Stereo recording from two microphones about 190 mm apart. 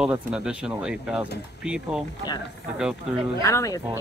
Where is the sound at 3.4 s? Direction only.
15° left (ahead or behind).